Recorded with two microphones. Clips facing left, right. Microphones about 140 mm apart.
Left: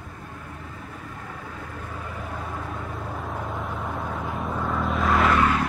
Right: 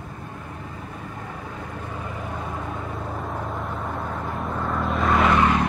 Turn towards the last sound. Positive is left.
turn(degrees=-25)  # may be behind; listen again after turning